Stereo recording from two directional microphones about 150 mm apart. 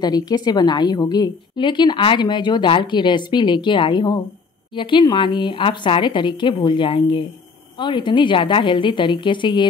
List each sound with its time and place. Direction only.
0.0 s a woman's voice: 25° left (ahead or behind)